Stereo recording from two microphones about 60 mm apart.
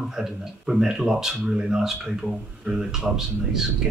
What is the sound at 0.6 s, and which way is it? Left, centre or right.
Speech, centre.